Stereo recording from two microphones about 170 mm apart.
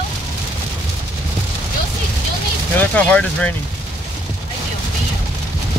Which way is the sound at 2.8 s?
5° left (ahead or behind).